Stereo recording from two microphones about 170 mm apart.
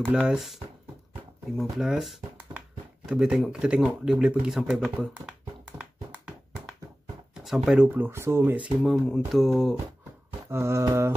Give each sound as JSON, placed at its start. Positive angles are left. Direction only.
{"t": 0.0, "sound": "speech", "side_deg": -5}
{"t": 1.6, "sound": "speech", "side_deg": 0}
{"t": 5.7, "sound": "a sound", "side_deg": -5}
{"t": 7.4, "sound": "speech", "side_deg": 0}
{"t": 8.8, "sound": "speech", "side_deg": 0}
{"t": 10.5, "sound": "speech", "side_deg": -15}